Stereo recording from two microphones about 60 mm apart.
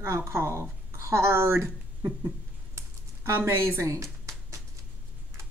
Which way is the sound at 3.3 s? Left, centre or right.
Right.